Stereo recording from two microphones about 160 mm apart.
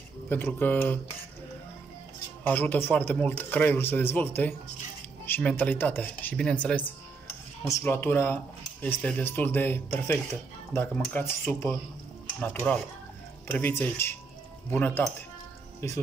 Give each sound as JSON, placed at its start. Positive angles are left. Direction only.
{"t": 0.3, "sound": "speech", "side_deg": 10}
{"t": 2.4, "sound": "speech", "side_deg": 10}
{"t": 13.5, "sound": "speech", "side_deg": 15}